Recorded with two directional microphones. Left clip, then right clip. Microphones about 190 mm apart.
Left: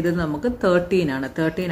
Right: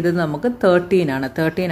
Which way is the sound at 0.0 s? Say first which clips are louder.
Right 3 dB; 35° right (ahead or behind).